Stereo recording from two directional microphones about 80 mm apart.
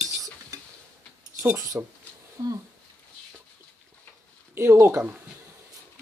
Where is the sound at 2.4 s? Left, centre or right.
Right.